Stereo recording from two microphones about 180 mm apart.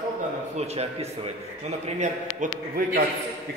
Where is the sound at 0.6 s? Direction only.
35° right (ahead or behind).